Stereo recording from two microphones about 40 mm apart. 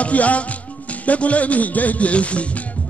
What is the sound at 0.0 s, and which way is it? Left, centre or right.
Music, left.